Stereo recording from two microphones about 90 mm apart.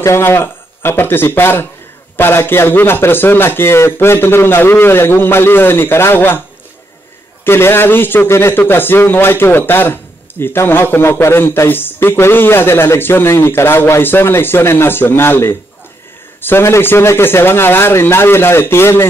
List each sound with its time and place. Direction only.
0.0 s a man's voice: 30° left (ahead or behind)
7.4 s a man's voice: 25° left (ahead or behind)